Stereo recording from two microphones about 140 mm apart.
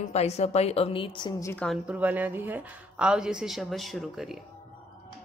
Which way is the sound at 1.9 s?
10° right (ahead or behind).